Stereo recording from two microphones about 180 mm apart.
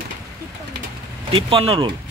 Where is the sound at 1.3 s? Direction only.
30° right (ahead or behind).